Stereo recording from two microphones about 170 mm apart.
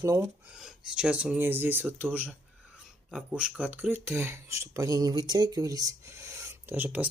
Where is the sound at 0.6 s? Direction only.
5° right (ahead or behind).